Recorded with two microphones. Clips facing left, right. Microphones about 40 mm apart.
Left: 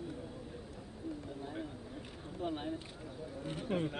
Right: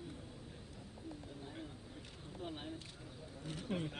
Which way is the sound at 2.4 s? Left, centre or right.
Centre.